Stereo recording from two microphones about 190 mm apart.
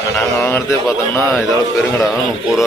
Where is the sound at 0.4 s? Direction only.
15° left (ahead or behind).